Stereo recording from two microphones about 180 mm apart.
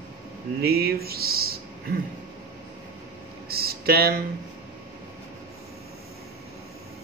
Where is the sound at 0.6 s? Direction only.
60° right (ahead or behind).